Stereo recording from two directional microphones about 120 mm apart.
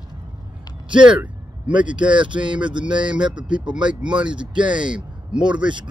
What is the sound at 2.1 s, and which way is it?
Speech, 45° right (ahead or behind).